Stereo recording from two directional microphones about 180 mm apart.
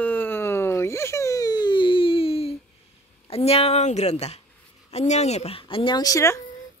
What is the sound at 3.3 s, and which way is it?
A woman's voice, 35° left (ahead or behind).